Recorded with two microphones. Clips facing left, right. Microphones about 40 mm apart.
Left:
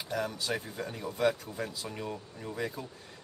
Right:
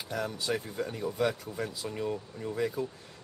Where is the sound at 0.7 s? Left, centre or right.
Centre.